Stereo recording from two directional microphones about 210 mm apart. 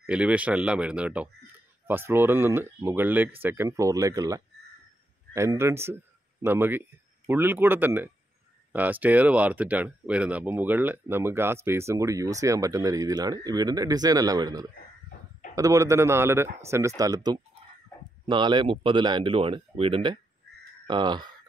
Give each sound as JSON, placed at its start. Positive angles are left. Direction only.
{"t": 0.0, "sound": "speech", "side_deg": -5}